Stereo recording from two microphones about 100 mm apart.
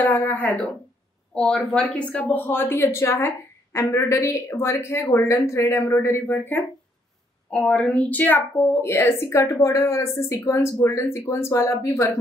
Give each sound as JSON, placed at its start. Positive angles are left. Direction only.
{"t": 0.0, "sound": "speech", "side_deg": 20}
{"t": 7.5, "sound": "a woman's voice", "side_deg": 10}
{"t": 8.5, "sound": "speech", "side_deg": 25}